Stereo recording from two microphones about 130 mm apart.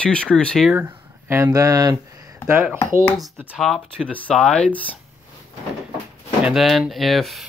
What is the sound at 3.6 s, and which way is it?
Speech, 5° left (ahead or behind).